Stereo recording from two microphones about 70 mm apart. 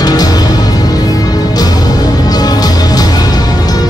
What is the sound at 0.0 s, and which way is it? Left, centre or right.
Music, left.